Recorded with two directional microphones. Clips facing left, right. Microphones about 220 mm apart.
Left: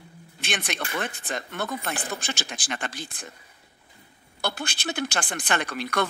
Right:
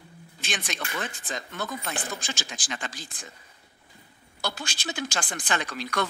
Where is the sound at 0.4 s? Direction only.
60° left (ahead or behind).